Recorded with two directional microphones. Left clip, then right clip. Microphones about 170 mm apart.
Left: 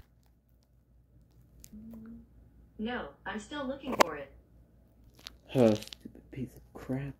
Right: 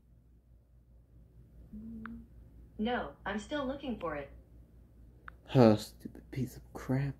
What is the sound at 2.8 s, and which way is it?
Speech, 75° right (ahead or behind).